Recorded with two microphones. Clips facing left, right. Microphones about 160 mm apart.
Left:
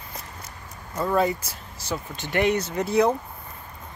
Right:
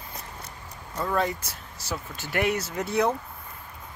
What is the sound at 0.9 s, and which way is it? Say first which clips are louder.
Speech: left 4 dB; 5° left (ahead or behind).